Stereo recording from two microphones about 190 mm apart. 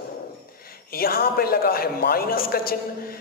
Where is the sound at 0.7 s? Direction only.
50° left (ahead or behind).